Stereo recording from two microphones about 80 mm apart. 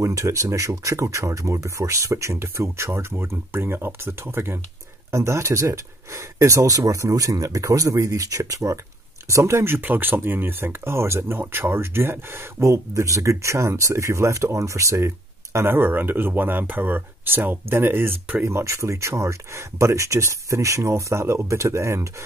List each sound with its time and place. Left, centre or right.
0.0 s speech: right
9.8 s speech: right